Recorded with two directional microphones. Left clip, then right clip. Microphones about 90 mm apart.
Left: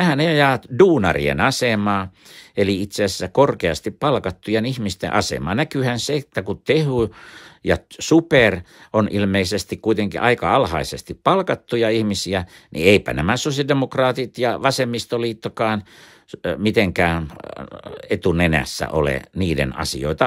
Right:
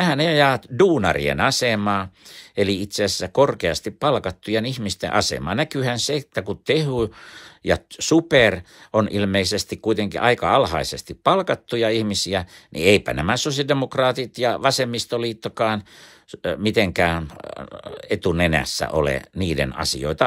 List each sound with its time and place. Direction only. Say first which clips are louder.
0.0 s speech: left 1 dB; 35° left (ahead or behind)